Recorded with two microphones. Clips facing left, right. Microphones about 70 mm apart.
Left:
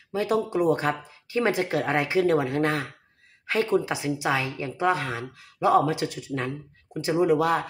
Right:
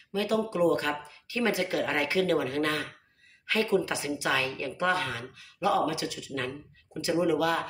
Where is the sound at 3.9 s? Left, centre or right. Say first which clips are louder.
Left 3 dB; centre.